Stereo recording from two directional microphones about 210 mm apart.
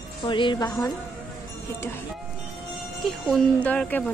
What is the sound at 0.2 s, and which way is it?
Speech, 20° left (ahead or behind).